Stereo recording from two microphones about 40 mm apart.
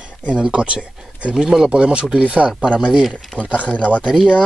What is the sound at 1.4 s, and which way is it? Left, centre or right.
Speech, centre.